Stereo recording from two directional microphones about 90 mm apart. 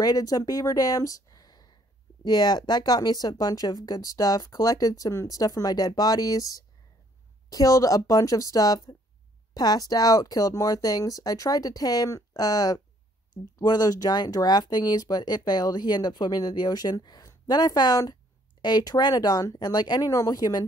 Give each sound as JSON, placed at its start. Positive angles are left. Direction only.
{"t": 0.0, "sound": "speech", "side_deg": 45}